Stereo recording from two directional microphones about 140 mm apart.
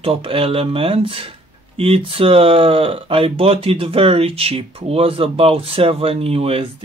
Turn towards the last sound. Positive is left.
turn(degrees=-45)  # may be behind; listen again after turning